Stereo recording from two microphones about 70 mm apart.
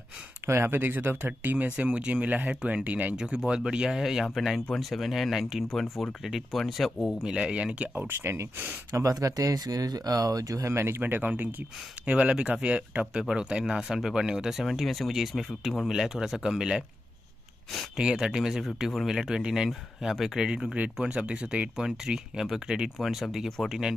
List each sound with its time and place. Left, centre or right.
0.5 s speech: right
3.2 s speech: centre
7.9 s speech: right
8.9 s speech: right; by 16.8 s centre
17.9 s speech: centre